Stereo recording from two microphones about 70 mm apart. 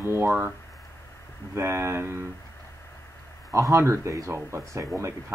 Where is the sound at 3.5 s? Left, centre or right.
Right.